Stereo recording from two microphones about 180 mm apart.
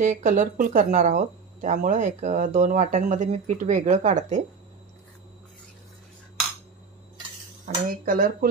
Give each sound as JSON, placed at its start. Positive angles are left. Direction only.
{"t": 0.0, "sound": "speech", "side_deg": -45}
{"t": 7.6, "sound": "speech", "side_deg": -50}